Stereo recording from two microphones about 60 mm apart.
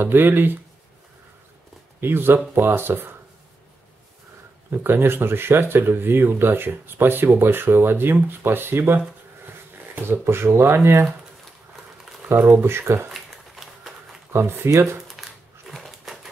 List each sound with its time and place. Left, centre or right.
0.0 s speech: right
2.0 s speech: right
4.7 s speech: right
12.3 s speech: right
13.1 s a sound: centre
14.3 s speech: right
15.0 s a sound: centre